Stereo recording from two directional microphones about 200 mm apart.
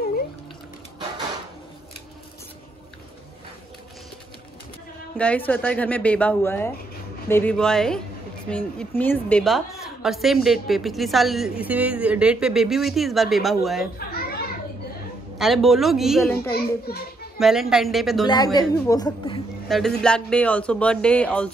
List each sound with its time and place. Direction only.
5.1 s a woman's voice: 5° left (ahead or behind)
13.9 s children playing: 50° left (ahead or behind)
15.3 s a woman's voice: centre (ahead or behind)
16.5 s a child's voice: 50° left (ahead or behind)
17.4 s a woman's voice: centre (ahead or behind)
18.2 s a woman's voice: 20° left (ahead or behind)
19.7 s a woman's voice: centre (ahead or behind)